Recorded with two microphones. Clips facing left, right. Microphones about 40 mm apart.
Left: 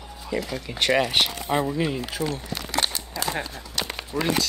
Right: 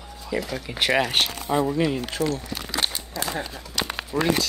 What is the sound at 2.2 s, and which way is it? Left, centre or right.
Speech, left.